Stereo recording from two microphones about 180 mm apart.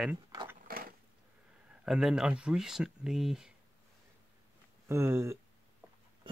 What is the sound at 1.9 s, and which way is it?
Speech, centre (ahead or behind).